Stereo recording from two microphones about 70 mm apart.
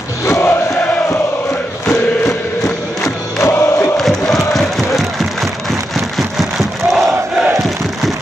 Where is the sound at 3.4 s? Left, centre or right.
Left.